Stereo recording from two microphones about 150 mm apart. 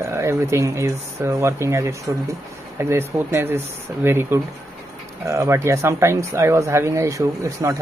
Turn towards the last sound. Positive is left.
turn(degrees=-20)  # may be behind; listen again after turning